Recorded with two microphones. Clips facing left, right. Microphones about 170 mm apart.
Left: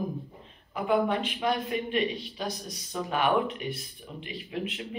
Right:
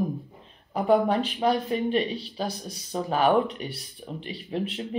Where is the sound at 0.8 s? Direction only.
35° right (ahead or behind).